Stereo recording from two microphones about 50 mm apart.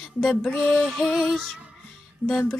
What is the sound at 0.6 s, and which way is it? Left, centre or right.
Music, centre.